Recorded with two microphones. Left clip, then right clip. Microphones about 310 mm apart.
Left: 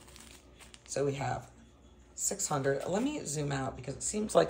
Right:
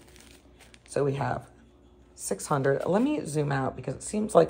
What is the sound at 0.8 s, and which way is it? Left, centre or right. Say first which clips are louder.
Speech: right 5 dB; centre.